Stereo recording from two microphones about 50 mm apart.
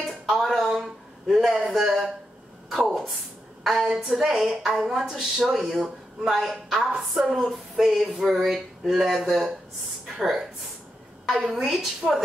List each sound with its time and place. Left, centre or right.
0.0 s a sound: centre
3.8 s a woman's voice: centre
4.1 s speech: centre